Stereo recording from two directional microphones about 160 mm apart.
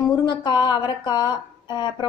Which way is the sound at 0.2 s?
30° left (ahead or behind).